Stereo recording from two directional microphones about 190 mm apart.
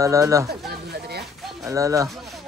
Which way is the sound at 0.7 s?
55° right (ahead or behind).